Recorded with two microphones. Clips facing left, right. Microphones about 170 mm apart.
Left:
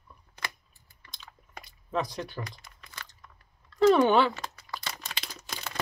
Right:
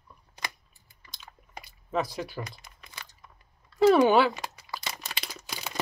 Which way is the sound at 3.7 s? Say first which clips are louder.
Right 1 dB; 5° right (ahead or behind).